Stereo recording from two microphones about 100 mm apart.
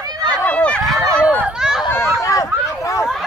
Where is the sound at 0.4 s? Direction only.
15° left (ahead or behind).